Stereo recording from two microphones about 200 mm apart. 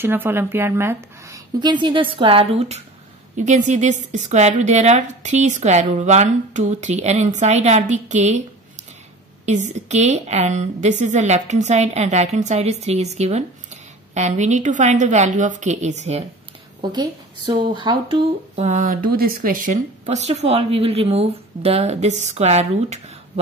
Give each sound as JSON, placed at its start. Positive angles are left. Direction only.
{"t": 0.0, "sound": "speech", "side_deg": -10}
{"t": 9.5, "sound": "speech", "side_deg": -35}
{"t": 16.8, "sound": "speech", "side_deg": -20}